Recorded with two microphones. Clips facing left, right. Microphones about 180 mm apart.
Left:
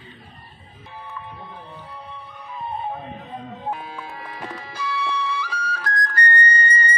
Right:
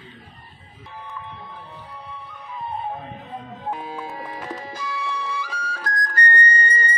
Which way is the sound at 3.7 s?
20° right (ahead or behind).